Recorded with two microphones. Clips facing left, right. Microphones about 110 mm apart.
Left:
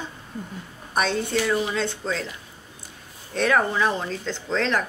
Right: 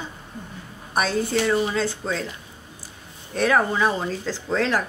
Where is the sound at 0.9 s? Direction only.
5° right (ahead or behind).